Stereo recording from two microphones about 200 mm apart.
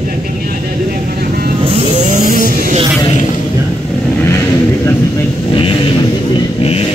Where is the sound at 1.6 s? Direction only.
30° right (ahead or behind).